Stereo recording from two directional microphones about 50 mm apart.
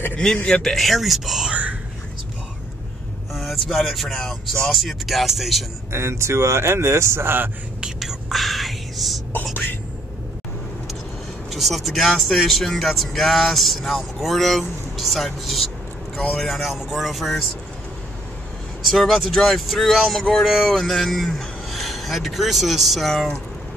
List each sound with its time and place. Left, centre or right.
0.6 s speech: centre
1.5 s whispering: right
3.3 s speech: centre
5.9 s a man's voice: right
8.0 s whispering: centre
11.5 s speech: centre
18.9 s a man's voice: centre